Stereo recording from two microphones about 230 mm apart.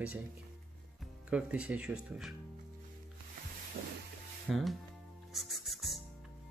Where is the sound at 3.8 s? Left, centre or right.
Right.